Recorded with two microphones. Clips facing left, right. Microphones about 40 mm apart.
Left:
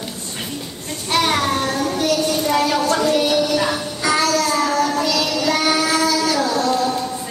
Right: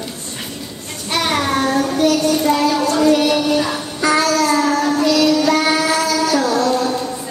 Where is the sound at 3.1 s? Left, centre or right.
Right.